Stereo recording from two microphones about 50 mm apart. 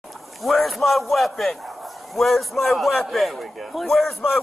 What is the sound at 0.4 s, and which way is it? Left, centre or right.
A man's voice, centre.